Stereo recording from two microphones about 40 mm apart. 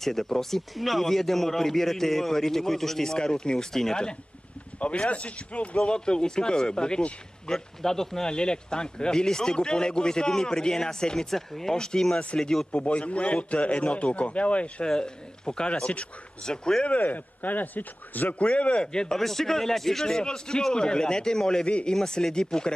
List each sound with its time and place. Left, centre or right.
0.0 s a man's voice: centre
4.7 s a man's voice: left
5.8 s a man's voice: left
7.4 s speech: centre
8.3 s a man's voice: left
12.7 s a man's voice: left
14.9 s a man's voice: left
16.4 s a man's voice: centre
16.8 s a man's voice: left
18.4 s a man's voice: left
18.9 s a man's voice: left
19.1 s speech: centre
21.6 s a man's voice: left
21.9 s speech: centre